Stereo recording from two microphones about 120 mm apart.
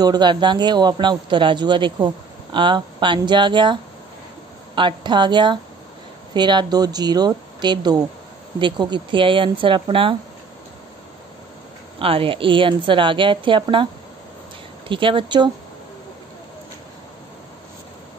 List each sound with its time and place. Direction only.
0.0 s a man's voice: 35° right (ahead or behind)
12.0 s a woman's voice: 50° right (ahead or behind)
14.9 s a woman's voice: 45° right (ahead or behind)